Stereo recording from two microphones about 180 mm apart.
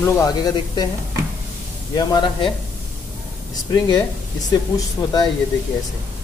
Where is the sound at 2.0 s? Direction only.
25° left (ahead or behind).